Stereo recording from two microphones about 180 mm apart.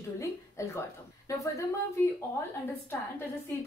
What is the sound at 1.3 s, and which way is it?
Speech, 20° left (ahead or behind).